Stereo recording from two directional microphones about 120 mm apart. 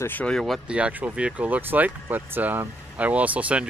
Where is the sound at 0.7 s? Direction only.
10° right (ahead or behind).